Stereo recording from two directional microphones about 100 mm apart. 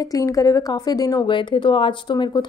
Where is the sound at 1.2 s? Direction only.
55° left (ahead or behind).